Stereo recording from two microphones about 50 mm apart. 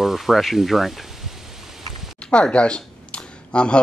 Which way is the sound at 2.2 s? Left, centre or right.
Left.